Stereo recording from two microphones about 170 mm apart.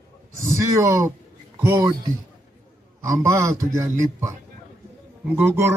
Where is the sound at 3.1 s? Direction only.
20° right (ahead or behind).